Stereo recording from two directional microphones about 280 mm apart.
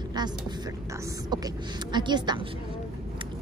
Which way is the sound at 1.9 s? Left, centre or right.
Centre.